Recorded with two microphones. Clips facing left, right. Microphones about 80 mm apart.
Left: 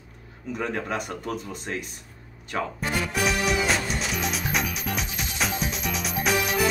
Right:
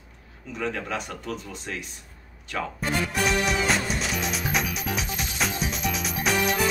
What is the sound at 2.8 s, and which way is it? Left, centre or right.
Music, centre.